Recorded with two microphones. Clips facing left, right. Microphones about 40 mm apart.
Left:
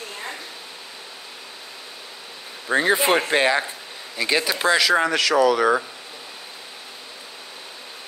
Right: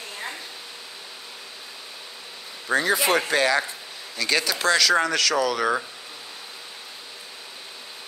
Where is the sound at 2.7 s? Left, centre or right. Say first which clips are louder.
Left 3 dB; left; by 5.8 s centre.